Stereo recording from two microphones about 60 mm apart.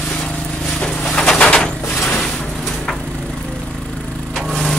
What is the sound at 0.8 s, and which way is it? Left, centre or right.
Pigeon, centre.